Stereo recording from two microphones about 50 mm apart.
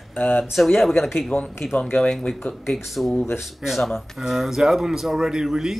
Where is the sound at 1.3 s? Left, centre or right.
Left.